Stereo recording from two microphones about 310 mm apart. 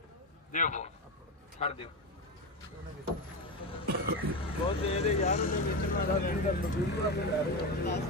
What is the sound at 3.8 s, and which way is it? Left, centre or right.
Cough, right.